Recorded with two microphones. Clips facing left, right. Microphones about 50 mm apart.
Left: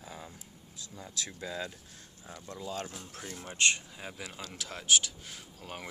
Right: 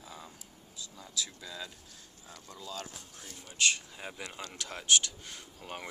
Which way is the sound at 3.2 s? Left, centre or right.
Left.